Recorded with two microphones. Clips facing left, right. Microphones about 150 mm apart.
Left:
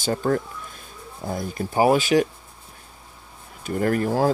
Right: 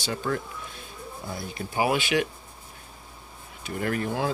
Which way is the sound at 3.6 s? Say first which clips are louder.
Left 6 dB; 45° left (ahead or behind).